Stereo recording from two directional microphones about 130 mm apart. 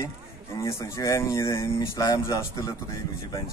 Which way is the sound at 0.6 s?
20° left (ahead or behind).